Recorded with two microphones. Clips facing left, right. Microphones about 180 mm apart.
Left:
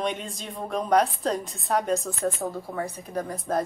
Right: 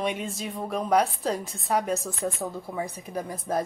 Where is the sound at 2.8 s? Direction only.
15° right (ahead or behind).